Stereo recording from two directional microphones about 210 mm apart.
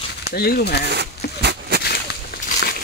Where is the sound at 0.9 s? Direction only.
50° right (ahead or behind).